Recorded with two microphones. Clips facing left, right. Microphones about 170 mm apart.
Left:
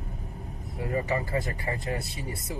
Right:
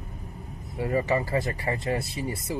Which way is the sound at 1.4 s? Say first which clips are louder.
Right 4 dB; centre (ahead or behind).